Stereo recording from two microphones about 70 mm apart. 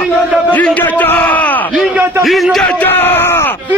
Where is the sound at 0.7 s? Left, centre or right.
Left.